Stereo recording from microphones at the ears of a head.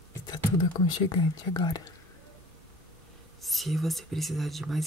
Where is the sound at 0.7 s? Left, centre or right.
Left.